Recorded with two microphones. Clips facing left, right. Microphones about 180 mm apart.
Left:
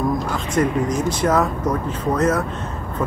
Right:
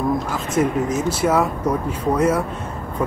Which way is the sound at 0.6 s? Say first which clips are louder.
Even; 5° right (ahead or behind).